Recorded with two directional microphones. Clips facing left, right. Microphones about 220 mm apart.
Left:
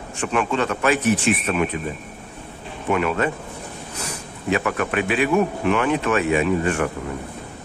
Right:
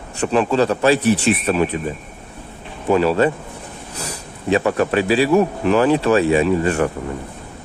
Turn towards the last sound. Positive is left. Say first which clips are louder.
# right 4 dB
turn(degrees=-35)  # may be behind; listen again after turning